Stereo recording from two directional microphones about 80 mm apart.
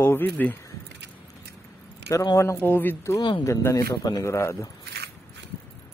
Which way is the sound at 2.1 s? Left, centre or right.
Left.